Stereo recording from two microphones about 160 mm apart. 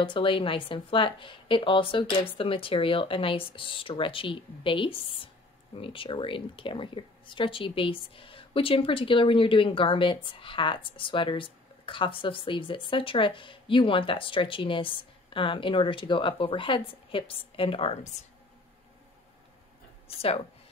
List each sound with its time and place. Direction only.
0.0 s speech: 35° left (ahead or behind)
20.1 s speech: 35° left (ahead or behind)